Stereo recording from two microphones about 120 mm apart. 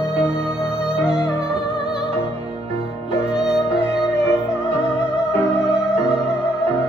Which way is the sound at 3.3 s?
5° right (ahead or behind).